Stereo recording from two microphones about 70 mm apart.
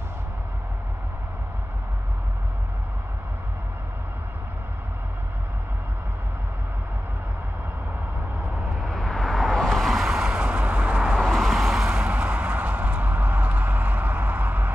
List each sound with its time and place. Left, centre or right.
8.8 s vehicle: centre
11.1 s vehicle: centre; by 14.7 s right